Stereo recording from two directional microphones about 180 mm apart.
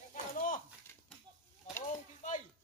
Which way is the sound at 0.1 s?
50° left (ahead or behind).